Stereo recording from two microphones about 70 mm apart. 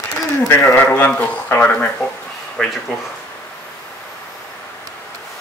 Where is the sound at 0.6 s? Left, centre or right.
Left.